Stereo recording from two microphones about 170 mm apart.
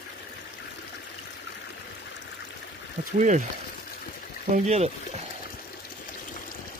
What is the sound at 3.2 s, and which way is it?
Speech, 45° right (ahead or behind).